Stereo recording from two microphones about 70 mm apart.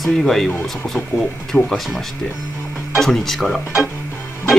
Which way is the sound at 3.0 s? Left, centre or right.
Centre.